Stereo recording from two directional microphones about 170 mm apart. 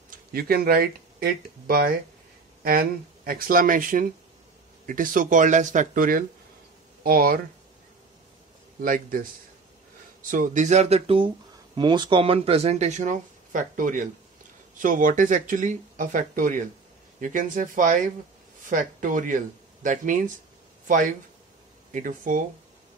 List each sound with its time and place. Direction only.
0.1 s speech: 65° right (ahead or behind)
8.8 s speech: 55° right (ahead or behind)
10.3 s speech: 50° right (ahead or behind)
21.9 s speech: 50° right (ahead or behind)